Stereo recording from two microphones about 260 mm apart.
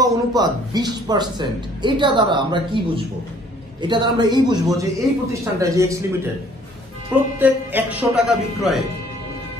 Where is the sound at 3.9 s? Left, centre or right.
Centre.